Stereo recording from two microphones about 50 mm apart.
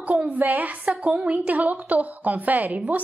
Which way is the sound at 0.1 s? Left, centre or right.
Right.